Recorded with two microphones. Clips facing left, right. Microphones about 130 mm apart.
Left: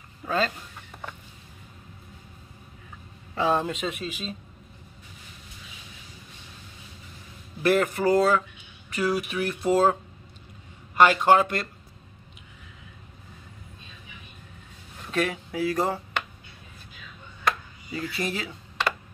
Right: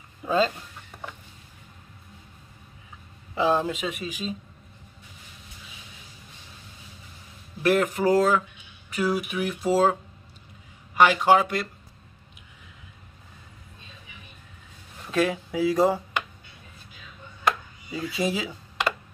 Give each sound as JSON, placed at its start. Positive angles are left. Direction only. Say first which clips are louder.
{"t": 0.2, "sound": "speech", "louder": "right 3 dB", "side_deg": -15}
{"t": 3.3, "sound": "speech", "louder": "right 1 dB", "side_deg": -5}
{"t": 7.6, "sound": "speech", "louder": "even", "side_deg": -5}
{"t": 11.0, "sound": "speech", "louder": "even", "side_deg": -5}
{"t": 15.0, "sound": "speech", "louder": "right 3 dB", "side_deg": -10}
{"t": 17.9, "sound": "speech", "louder": "right 3 dB", "side_deg": -10}